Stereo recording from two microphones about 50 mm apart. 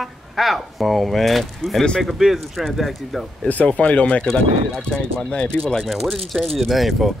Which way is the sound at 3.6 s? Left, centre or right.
Left.